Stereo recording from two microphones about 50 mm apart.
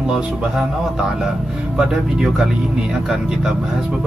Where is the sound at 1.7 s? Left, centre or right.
Centre.